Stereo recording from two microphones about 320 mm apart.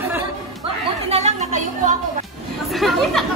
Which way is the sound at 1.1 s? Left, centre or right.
Centre.